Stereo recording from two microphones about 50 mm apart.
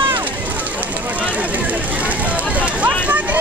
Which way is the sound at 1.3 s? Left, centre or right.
Right.